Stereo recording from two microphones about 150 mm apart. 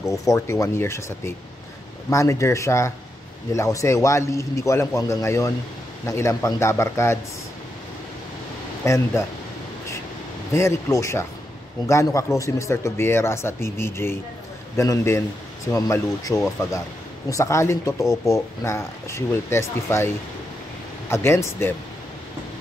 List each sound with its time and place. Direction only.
0.0 s a man's voice: 20° left (ahead or behind)
8.8 s a man's voice: 20° left (ahead or behind)
10.5 s a man's voice: 20° left (ahead or behind)
21.1 s speech: 15° left (ahead or behind)